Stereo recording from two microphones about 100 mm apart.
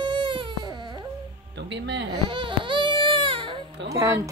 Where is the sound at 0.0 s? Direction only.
55° right (ahead or behind).